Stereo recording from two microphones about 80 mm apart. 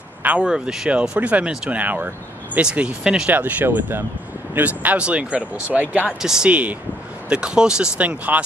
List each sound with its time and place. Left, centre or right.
0.2 s speech: right
0.5 s speech: centre
3.3 s speech: right
6.2 s speech: centre